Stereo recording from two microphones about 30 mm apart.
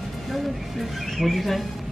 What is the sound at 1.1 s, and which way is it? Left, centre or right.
Speech, centre.